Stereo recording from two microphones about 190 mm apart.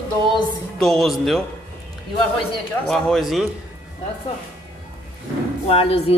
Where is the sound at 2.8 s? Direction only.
Centre (ahead or behind).